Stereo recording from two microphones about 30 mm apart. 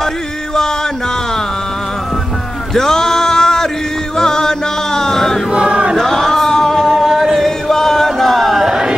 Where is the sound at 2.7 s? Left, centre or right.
Centre.